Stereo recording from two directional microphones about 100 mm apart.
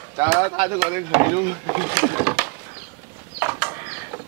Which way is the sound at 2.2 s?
25° right (ahead or behind).